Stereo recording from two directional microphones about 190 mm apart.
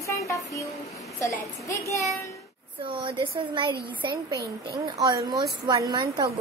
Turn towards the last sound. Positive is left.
turn(degrees=-20)  # may be behind; listen again after turning